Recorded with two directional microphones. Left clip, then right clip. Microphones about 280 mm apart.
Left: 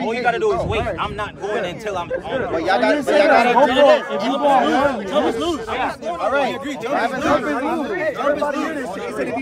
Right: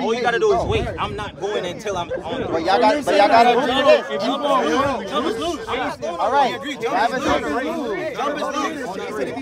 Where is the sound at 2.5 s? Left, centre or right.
Centre.